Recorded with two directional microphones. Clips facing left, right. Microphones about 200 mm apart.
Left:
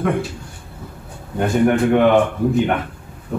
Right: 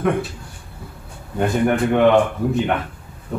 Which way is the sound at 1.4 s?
Centre (ahead or behind).